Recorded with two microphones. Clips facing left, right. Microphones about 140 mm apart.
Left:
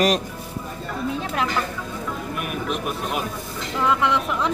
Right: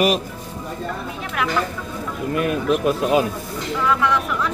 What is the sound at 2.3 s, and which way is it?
Speech, 90° right.